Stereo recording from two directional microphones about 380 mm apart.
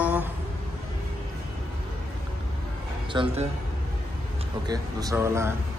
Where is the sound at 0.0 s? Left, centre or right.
Centre.